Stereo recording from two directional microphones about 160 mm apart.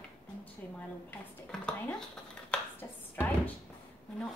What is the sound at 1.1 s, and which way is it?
Speech, 10° left (ahead or behind).